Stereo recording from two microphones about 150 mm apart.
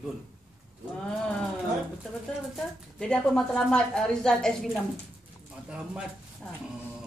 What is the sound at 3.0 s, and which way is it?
Speech, 5° left (ahead or behind).